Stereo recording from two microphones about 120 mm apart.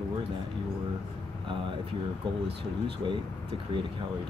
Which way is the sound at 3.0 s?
40° right (ahead or behind).